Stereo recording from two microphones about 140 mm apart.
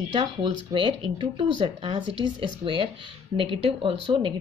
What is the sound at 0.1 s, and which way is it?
Speech, 35° right (ahead or behind).